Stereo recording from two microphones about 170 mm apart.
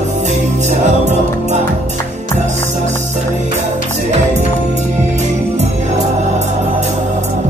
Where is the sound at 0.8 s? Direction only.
45° right (ahead or behind).